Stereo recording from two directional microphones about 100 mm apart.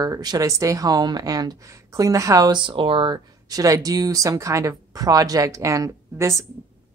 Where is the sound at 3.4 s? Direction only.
35° right (ahead or behind).